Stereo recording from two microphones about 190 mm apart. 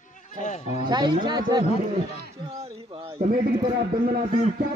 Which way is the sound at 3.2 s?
50° right (ahead or behind).